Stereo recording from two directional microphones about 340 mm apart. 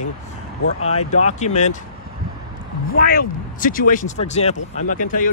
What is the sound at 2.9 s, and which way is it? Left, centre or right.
Speech, left.